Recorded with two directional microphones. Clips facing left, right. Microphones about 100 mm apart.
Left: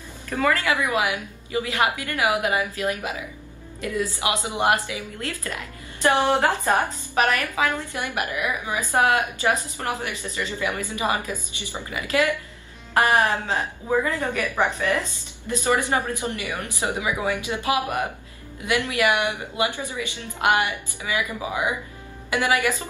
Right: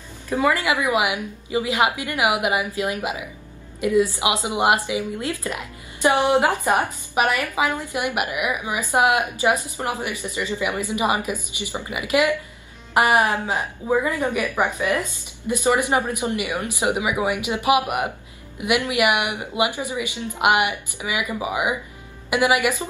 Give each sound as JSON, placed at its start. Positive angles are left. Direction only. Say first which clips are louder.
{"t": 0.3, "sound": "a woman's voice", "louder": "right 2 dB", "side_deg": -15}